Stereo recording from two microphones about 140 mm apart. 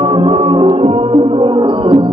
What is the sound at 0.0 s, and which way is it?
Music, 40° right (ahead or behind).